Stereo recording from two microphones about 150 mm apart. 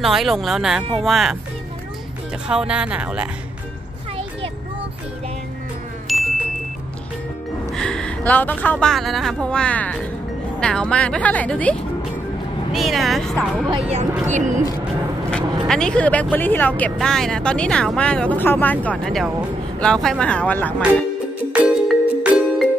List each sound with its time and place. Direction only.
0.0 s speech: centre (ahead or behind)
2.4 s speech: 5° right (ahead or behind)
6.1 s chime: centre (ahead or behind)
7.7 s speech: 5° left (ahead or behind)
13.7 s speech: 40° right (ahead or behind)
14.3 s speech: 55° right (ahead or behind)
15.3 s speech: 5° left (ahead or behind)
21.5 s music: 10° right (ahead or behind)